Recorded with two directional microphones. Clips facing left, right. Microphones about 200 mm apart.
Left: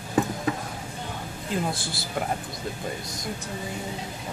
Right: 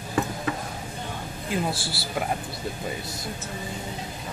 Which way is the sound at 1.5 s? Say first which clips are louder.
Right 1 dB; 5° right (ahead or behind).